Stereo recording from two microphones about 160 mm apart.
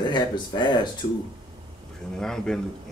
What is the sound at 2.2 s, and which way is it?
Speech, 5° left (ahead or behind).